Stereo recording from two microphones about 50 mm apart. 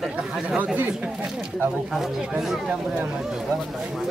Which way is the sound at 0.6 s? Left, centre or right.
Right.